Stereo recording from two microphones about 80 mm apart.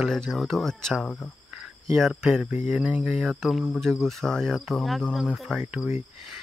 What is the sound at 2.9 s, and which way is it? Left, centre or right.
Speech, centre.